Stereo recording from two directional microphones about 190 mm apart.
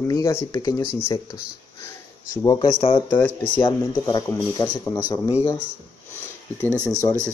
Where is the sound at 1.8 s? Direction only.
15° left (ahead or behind).